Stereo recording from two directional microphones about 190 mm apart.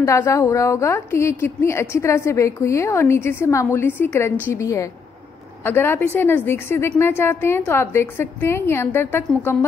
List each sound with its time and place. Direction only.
0.0 s a woman's voice: 15° left (ahead or behind)